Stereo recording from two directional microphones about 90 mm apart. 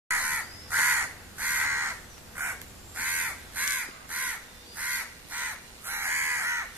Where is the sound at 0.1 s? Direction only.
20° right (ahead or behind).